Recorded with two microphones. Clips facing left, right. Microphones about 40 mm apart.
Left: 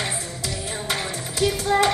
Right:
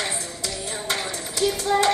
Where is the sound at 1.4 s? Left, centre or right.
Centre.